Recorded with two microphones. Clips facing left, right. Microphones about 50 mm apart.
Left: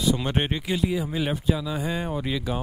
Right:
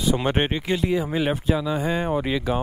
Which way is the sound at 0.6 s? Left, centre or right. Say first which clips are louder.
Right 3 dB; centre.